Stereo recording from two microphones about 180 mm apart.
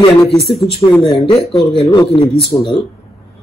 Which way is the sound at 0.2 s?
Centre (ahead or behind).